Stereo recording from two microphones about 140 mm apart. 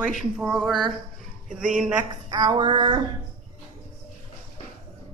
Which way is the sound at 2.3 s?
35° right (ahead or behind).